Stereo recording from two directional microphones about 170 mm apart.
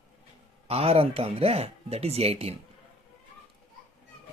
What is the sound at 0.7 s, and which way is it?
Speech, 35° right (ahead or behind).